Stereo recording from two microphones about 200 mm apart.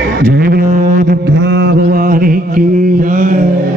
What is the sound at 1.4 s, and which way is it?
Mantra, 55° right (ahead or behind).